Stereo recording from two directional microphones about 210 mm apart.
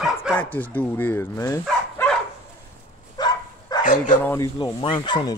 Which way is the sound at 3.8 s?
35° left (ahead or behind).